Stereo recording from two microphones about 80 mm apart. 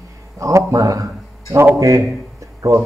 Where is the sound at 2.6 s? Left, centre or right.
Right.